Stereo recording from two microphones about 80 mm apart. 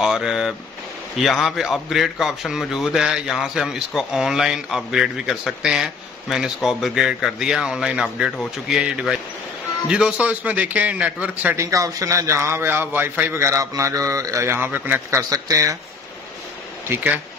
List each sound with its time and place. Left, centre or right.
0.0 s a man's voice: centre
11.5 s a man's voice: right
13.4 s a man's voice: right
14.5 s speech: right
15.0 s a man's voice: right